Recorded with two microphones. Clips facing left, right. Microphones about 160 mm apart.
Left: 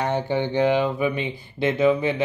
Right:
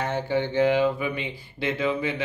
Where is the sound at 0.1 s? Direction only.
20° left (ahead or behind).